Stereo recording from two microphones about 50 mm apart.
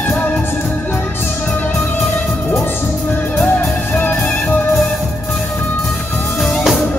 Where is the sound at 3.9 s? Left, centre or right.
Left.